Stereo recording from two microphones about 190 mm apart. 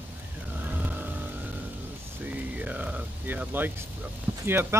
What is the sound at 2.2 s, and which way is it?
Rain on surface, 10° right (ahead or behind).